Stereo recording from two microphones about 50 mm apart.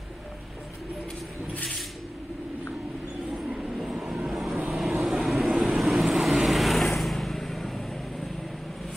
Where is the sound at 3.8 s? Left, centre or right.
Centre.